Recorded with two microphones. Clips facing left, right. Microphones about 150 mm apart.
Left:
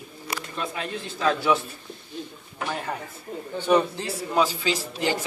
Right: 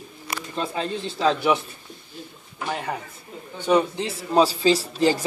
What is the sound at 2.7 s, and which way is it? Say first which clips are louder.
Speech: right 4 dB; 15° right (ahead or behind).